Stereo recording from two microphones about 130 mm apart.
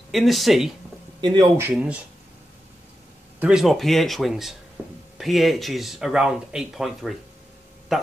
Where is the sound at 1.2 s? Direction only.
35° right (ahead or behind).